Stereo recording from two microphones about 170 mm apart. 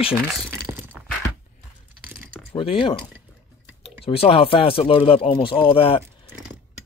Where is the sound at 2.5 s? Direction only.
30° left (ahead or behind).